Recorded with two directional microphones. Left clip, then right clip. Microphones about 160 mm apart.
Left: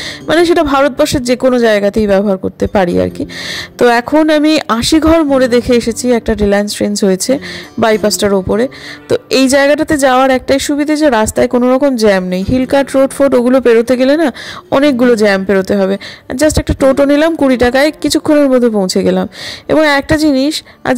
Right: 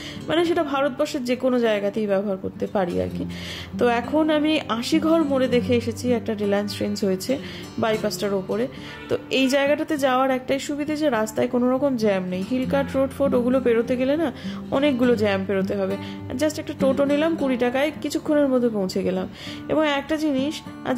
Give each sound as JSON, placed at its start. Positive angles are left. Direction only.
{"t": 0.3, "sound": "a man's voice", "side_deg": 55}